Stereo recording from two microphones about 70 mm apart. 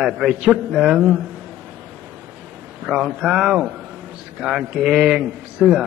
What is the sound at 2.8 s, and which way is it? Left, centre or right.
A man's voice, centre.